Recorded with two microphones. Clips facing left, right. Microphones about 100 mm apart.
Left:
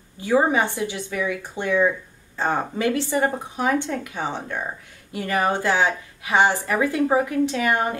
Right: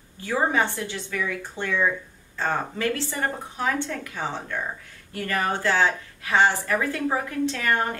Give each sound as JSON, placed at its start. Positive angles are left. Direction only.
{"t": 0.2, "sound": "a woman's voice", "side_deg": 15}